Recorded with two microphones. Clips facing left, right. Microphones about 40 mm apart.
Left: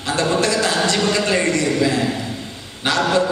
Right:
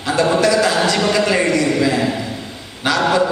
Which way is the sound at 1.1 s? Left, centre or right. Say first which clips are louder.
Right 3 dB; right.